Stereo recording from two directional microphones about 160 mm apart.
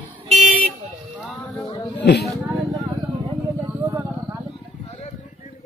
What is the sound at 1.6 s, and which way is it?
Speech, 20° left (ahead or behind).